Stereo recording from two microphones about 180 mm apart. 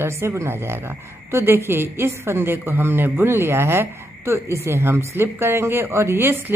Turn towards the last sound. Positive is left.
turn(degrees=-10)  # may be behind; listen again after turning